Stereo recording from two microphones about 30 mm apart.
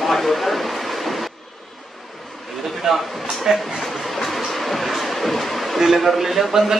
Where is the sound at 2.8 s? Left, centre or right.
Centre.